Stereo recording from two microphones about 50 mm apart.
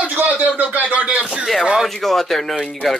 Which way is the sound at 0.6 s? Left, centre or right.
Right.